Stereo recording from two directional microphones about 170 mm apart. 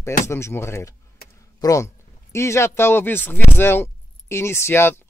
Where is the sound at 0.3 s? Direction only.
15° left (ahead or behind).